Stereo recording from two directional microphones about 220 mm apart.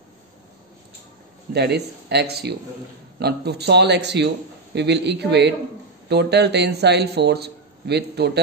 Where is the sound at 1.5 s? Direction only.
50° right (ahead or behind).